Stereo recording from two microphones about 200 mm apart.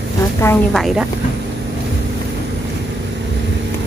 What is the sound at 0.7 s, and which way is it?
Speech, centre (ahead or behind).